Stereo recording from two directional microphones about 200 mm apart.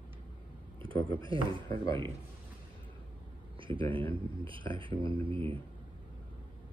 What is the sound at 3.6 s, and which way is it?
Speech, 25° right (ahead or behind).